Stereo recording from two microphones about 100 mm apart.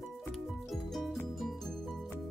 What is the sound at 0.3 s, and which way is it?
Music, centre (ahead or behind).